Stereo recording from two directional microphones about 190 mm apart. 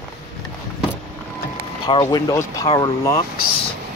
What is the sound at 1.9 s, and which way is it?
Speech, 25° left (ahead or behind).